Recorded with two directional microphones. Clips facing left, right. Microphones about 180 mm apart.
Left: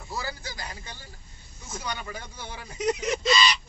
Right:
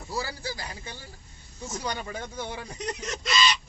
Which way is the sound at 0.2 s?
30° right (ahead or behind).